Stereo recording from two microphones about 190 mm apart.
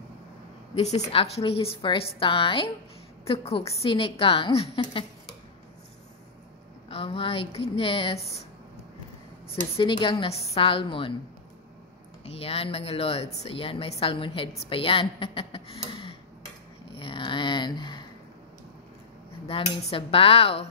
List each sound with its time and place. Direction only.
0.7 s speech: 30° left (ahead or behind)
6.9 s speech: 30° left (ahead or behind)
9.8 s speech: 25° left (ahead or behind)
12.3 s speech: 30° left (ahead or behind)
17.0 s a sound: 25° left (ahead or behind)
19.4 s speech: 30° left (ahead or behind)